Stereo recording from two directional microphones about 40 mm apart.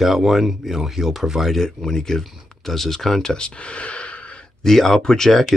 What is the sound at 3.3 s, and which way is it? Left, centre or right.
Speech, left.